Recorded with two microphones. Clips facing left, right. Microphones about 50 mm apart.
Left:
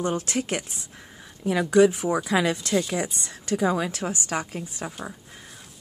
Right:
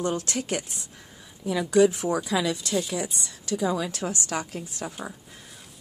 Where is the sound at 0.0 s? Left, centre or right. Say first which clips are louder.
Left 2 dB; left.